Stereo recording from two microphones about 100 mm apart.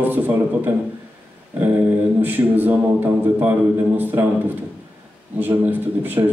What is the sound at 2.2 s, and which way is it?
A man's voice, 20° right (ahead or behind).